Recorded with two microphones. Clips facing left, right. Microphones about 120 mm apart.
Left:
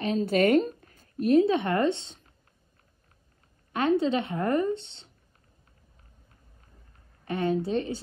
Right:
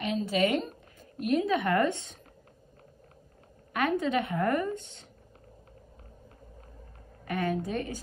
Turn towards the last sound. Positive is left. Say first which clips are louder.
# left 4 dB
turn(degrees=25)  # may be behind; listen again after turning